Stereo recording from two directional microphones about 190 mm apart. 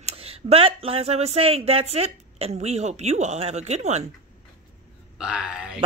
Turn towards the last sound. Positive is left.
turn(degrees=-5)  # may be behind; listen again after turning